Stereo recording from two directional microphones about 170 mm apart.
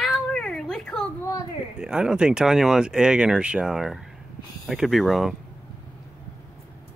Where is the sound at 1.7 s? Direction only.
5° right (ahead or behind).